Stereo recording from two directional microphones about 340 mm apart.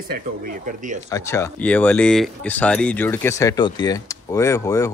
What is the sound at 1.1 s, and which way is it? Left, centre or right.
Speech, centre.